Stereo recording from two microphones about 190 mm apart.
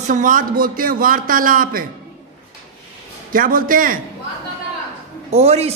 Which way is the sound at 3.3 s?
45° right (ahead or behind).